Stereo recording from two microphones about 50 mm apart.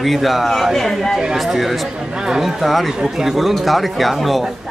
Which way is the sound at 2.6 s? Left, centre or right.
Centre.